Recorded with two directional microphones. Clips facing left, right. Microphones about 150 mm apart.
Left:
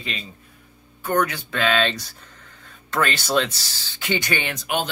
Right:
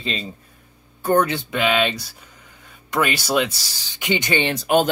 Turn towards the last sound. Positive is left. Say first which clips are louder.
# right 8 dB
turn(degrees=-40)  # may be behind; listen again after turning